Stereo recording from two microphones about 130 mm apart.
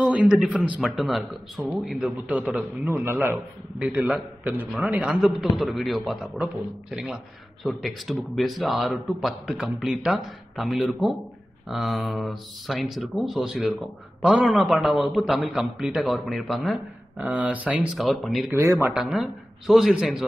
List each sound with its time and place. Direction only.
0.0 s a man's voice: 10° right (ahead or behind)
17.2 s a man's voice: 10° right (ahead or behind)
17.9 s speech: centre (ahead or behind)
18.5 s a man's voice: 20° right (ahead or behind)
18.9 s speech: centre (ahead or behind)